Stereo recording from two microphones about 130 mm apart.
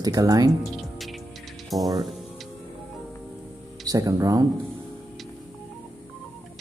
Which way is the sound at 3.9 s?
25° right (ahead or behind).